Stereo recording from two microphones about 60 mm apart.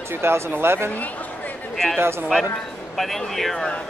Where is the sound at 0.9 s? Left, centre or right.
Left.